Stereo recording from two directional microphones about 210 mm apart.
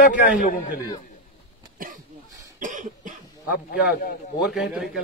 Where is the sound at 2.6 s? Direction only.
40° right (ahead or behind).